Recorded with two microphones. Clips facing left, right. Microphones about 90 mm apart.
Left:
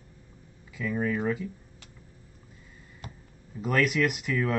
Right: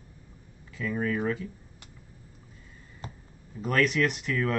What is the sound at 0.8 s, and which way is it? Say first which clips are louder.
Speech: left 1 dB; 5° left (ahead or behind).